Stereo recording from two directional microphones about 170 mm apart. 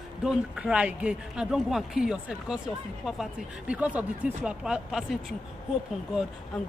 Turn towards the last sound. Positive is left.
turn(degrees=0)  # may be behind; listen again after turning